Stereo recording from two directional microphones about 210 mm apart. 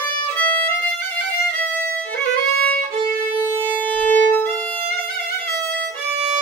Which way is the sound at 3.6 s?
10° left (ahead or behind).